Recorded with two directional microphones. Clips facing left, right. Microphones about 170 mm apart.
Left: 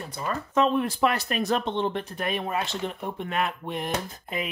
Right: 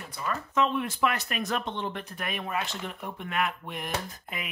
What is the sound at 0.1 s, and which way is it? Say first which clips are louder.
Speech: left 3 dB; 35° left (ahead or behind).